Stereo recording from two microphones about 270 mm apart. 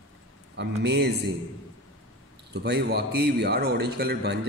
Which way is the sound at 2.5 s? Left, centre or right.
Right.